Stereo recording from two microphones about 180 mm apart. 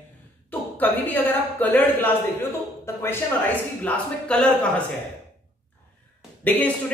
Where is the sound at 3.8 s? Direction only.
5° left (ahead or behind).